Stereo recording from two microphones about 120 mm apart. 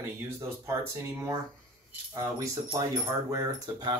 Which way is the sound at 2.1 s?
30° right (ahead or behind).